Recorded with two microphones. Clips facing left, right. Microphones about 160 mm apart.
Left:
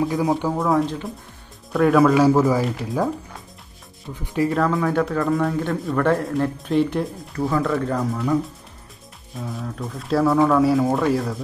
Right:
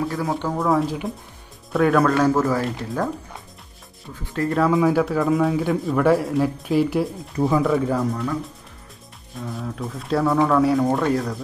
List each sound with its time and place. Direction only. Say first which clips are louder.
0.0 s speech: left 4 dB; 15° left (ahead or behind)
4.2 s speech: left 3 dB; 15° left (ahead or behind)
4.5 s speech: right 5 dB; centre (ahead or behind)
7.3 s speech: right 2 dB; 15° right (ahead or behind)
7.6 s speech: right 2 dB; 5° right (ahead or behind)
9.3 s speech: even; centre (ahead or behind)